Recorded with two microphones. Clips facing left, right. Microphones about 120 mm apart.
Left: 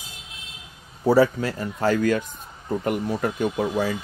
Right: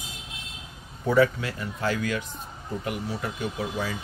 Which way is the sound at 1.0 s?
35° left (ahead or behind).